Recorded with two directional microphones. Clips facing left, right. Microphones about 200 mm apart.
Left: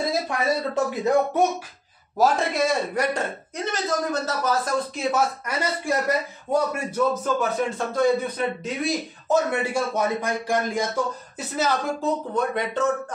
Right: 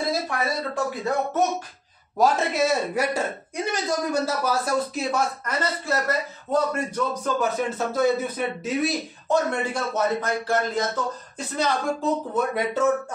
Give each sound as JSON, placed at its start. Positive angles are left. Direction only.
{"t": 0.8, "sound": "speech", "side_deg": 20}
{"t": 2.1, "sound": "a man's voice", "side_deg": -5}
{"t": 5.1, "sound": "speech", "side_deg": 10}
{"t": 12.4, "sound": "a man's voice", "side_deg": -10}